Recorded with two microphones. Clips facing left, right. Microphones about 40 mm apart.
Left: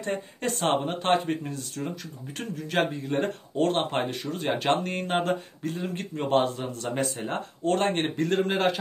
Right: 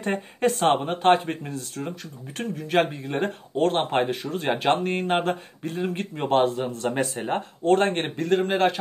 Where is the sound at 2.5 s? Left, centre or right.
Centre.